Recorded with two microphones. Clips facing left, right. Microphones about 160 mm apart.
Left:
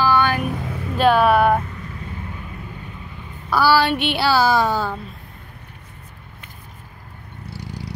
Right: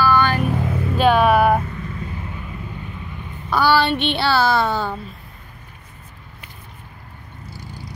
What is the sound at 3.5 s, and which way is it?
A woman's voice, 5° left (ahead or behind).